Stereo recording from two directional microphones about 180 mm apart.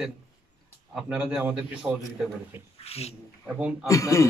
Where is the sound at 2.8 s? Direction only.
35° left (ahead or behind).